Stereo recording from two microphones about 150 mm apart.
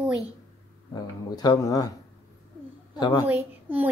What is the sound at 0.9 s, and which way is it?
Speech, 25° left (ahead or behind).